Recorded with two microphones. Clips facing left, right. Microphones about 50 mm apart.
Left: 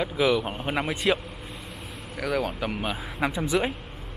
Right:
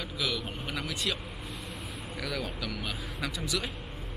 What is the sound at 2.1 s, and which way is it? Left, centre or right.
Speech, left.